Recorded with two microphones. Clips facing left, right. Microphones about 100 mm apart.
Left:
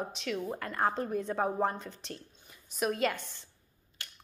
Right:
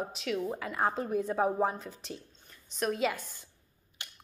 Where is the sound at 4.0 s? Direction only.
20° right (ahead or behind).